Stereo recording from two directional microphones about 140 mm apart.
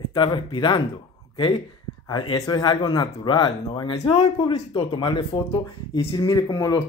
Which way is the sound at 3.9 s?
50° left (ahead or behind).